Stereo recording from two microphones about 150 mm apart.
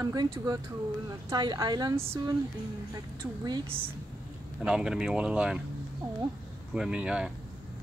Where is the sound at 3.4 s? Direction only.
30° right (ahead or behind).